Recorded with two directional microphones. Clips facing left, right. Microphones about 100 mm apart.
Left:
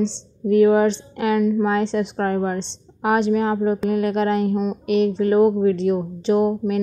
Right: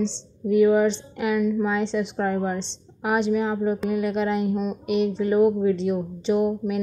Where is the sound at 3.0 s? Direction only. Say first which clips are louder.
Left 4 dB; 65° left (ahead or behind).